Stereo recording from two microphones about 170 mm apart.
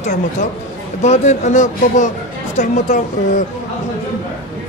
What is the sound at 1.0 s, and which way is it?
Speech, 40° left (ahead or behind).